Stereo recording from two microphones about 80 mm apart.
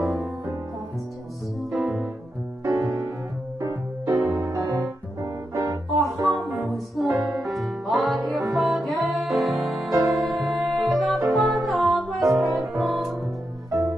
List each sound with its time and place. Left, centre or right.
1.7 s music: centre
2.6 s music: right
4.1 s music: right
4.5 s music: right
5.6 s music: right
6.3 s music: centre
10.0 s music: right
10.8 s music: centre